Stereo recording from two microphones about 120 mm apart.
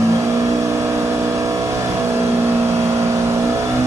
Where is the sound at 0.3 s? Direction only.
25° right (ahead or behind).